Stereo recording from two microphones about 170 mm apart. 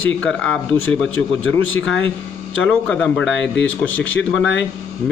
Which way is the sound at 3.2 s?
90° left.